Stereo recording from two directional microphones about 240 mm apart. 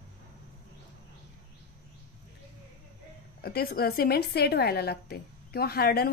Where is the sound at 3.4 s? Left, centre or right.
Left.